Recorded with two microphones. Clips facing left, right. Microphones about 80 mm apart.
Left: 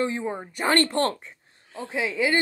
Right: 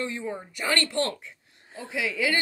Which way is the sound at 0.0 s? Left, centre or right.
Left.